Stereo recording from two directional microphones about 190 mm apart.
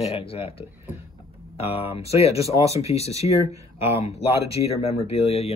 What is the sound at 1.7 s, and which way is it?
Speech, 30° left (ahead or behind).